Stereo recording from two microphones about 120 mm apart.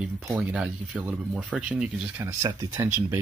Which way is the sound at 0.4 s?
5° right (ahead or behind).